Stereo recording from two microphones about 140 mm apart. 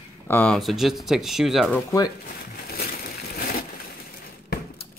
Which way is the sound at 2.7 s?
90° left.